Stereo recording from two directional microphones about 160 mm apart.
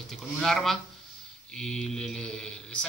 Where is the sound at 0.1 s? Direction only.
Centre (ahead or behind).